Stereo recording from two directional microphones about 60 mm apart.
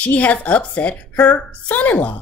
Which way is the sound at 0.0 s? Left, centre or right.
Left.